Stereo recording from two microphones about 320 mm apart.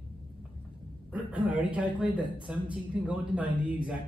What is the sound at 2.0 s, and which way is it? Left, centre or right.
Speech, centre.